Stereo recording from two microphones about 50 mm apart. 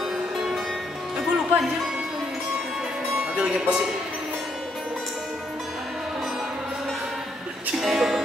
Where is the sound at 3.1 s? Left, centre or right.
Centre.